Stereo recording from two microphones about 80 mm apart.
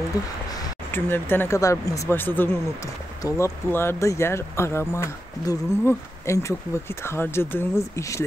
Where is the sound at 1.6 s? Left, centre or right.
Left.